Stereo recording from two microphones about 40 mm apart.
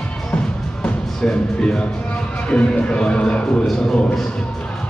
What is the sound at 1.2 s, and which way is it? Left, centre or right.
Speech, left.